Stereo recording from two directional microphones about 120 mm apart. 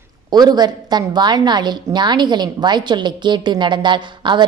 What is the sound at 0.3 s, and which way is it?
A woman's voice, 35° right (ahead or behind).